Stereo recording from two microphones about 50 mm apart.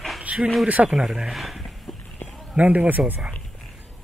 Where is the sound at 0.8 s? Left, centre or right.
Centre.